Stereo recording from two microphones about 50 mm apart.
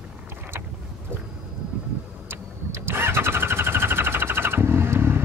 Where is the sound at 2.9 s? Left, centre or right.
Right.